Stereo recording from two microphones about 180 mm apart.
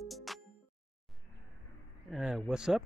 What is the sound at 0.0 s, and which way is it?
Music, centre (ahead or behind).